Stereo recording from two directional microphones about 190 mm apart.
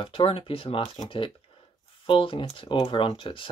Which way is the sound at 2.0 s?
30° left (ahead or behind).